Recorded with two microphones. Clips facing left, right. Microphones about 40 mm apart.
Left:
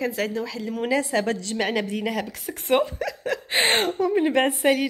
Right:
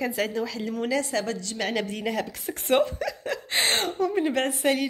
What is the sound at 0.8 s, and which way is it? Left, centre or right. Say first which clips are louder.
Speech: left 5 dB; left.